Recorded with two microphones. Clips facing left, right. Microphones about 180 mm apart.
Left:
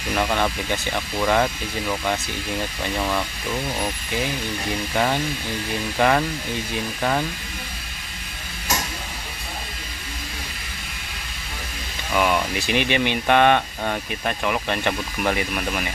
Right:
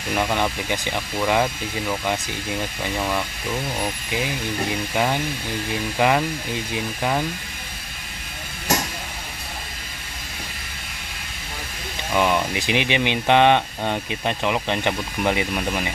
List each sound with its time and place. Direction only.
0.1 s speech: 10° right (ahead or behind)
4.9 s speech: 10° right (ahead or behind)
12.1 s speech: 15° right (ahead or behind)